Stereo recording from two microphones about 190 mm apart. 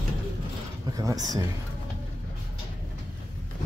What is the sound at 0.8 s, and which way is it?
Speech, 20° right (ahead or behind).